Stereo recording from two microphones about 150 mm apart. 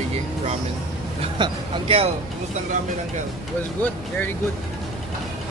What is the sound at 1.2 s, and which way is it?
Speech, 40° right (ahead or behind).